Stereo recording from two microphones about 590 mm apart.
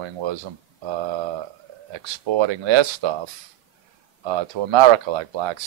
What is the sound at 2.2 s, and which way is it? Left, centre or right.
Speech, right.